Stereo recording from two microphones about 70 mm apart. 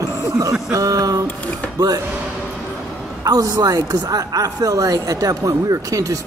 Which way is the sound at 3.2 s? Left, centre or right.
Right.